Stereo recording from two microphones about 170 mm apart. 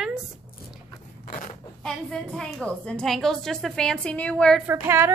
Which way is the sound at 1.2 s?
50° left (ahead or behind).